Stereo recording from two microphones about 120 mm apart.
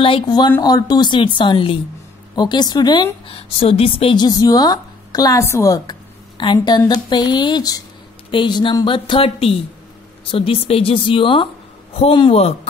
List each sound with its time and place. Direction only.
0.0 s a woman's voice: 40° left (ahead or behind)
3.3 s speech: 50° left (ahead or behind)
4.2 s a woman's voice: 30° left (ahead or behind)
6.3 s a woman's voice: 40° left (ahead or behind)